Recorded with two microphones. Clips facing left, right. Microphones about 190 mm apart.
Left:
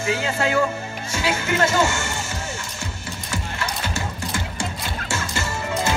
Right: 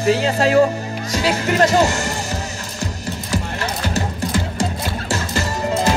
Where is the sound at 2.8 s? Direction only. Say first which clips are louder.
Right 7 dB; 35° right (ahead or behind).